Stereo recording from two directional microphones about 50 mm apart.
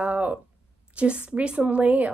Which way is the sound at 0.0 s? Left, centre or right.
Right.